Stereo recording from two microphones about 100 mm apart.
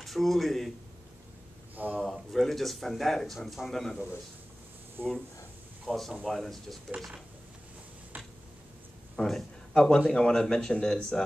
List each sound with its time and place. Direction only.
0.0 s speech: centre (ahead or behind)
2.0 s speech: centre (ahead or behind)
5.0 s speech: 20° right (ahead or behind)
5.9 s speech: centre (ahead or behind)
9.1 s speech: 5° left (ahead or behind)